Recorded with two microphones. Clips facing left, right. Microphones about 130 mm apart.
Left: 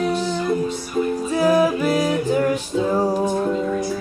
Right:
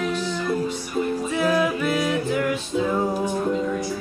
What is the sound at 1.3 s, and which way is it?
Music, 35° left (ahead or behind).